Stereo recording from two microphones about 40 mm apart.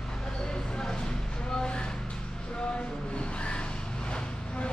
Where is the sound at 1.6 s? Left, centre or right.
Left.